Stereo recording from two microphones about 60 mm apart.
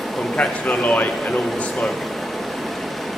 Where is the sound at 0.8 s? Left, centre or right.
Left.